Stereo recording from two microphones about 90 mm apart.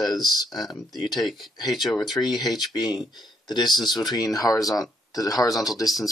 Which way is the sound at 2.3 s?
50° left (ahead or behind).